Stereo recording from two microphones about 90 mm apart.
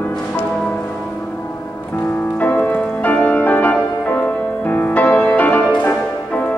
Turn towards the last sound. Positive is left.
turn(degrees=15)  # may be behind; listen again after turning